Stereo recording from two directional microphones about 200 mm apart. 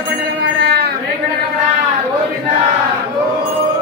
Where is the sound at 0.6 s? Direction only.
50° right (ahead or behind).